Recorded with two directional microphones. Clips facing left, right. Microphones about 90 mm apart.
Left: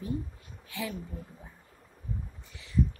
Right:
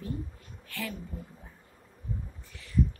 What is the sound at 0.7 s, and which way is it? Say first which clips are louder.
Speech: left 1 dB; 20° left (ahead or behind).